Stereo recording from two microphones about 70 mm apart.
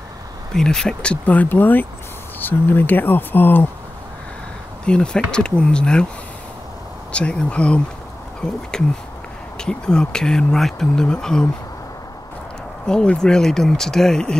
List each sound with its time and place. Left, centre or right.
0.5 s speech: centre; by 3.6 s left
4.8 s speech: centre
7.1 s speech: centre
12.8 s speech: centre